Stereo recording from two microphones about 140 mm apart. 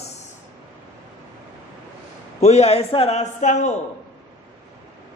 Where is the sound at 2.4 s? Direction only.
50° left (ahead or behind).